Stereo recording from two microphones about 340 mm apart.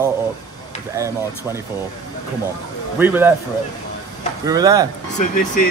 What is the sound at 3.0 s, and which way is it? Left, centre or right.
Speech, centre.